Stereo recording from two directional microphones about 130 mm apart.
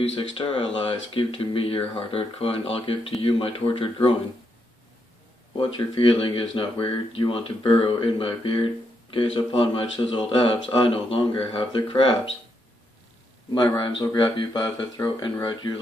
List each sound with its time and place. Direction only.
0.4 s speech: 45° left (ahead or behind)
5.6 s speech: 45° left (ahead or behind)
13.5 s speech: 40° left (ahead or behind)